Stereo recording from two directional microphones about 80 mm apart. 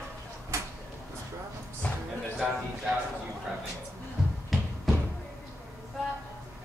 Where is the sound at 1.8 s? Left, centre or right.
Left.